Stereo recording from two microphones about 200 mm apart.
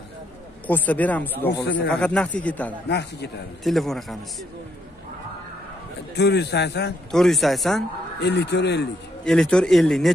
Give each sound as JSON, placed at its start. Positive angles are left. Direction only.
{"t": 0.7, "sound": "speech", "side_deg": 10}
{"t": 2.9, "sound": "a man's voice", "side_deg": 55}
{"t": 3.6, "sound": "a man's voice", "side_deg": 0}
{"t": 6.1, "sound": "a man's voice", "side_deg": 55}
{"t": 7.1, "sound": "a man's voice", "side_deg": 0}
{"t": 8.2, "sound": "a man's voice", "side_deg": 55}
{"t": 9.2, "sound": "a man's voice", "side_deg": 5}